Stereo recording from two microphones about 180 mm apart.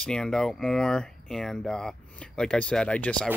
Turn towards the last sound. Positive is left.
turn(degrees=5)  # may be behind; listen again after turning